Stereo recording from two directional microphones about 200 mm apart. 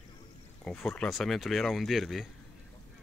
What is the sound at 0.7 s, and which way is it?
Speech, 5° left (ahead or behind).